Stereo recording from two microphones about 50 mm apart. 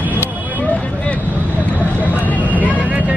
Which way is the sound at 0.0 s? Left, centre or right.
Right.